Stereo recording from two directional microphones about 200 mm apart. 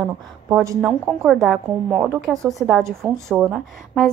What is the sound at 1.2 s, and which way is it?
Speech, centre (ahead or behind).